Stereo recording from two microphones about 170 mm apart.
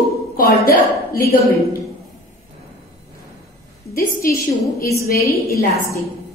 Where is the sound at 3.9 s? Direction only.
60° left (ahead or behind).